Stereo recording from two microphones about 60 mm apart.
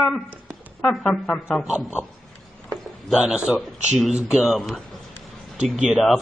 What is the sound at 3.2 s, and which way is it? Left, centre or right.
Speech, right.